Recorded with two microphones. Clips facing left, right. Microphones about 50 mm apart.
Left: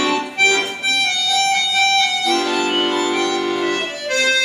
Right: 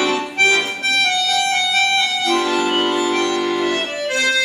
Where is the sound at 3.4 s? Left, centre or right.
Centre.